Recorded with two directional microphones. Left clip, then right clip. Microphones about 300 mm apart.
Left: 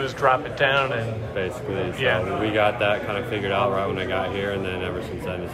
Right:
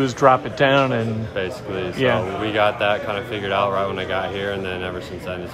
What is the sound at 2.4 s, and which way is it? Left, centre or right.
A man's voice, centre.